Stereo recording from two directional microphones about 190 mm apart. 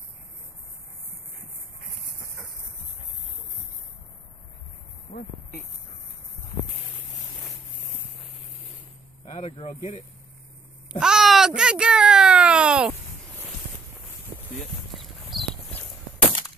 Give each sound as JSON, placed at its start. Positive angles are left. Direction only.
{"t": 9.2, "sound": "speech", "side_deg": 25}
{"t": 10.9, "sound": "a sound", "side_deg": -5}
{"t": 14.6, "sound": "clip-clop", "side_deg": 0}